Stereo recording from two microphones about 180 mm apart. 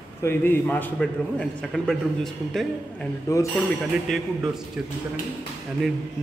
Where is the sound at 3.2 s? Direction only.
15° left (ahead or behind).